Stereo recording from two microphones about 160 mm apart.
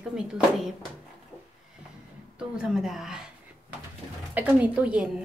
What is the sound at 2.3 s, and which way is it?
Speech, 5° right (ahead or behind).